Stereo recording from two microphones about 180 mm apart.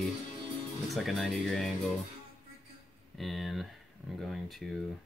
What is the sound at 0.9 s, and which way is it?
Speech, centre (ahead or behind).